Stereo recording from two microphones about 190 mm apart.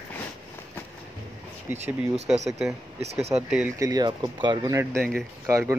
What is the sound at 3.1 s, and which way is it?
Speech, 35° right (ahead or behind).